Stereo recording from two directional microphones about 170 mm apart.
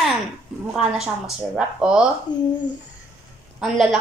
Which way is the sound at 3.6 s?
5° right (ahead or behind).